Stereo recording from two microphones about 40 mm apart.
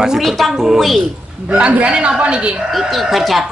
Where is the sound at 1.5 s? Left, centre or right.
Right.